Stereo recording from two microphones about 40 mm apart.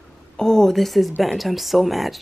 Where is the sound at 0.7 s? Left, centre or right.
Centre.